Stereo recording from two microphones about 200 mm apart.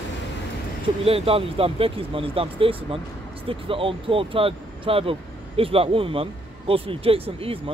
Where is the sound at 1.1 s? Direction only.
30° right (ahead or behind).